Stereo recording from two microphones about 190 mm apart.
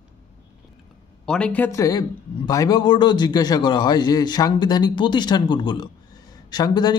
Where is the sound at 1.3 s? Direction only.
5° left (ahead or behind).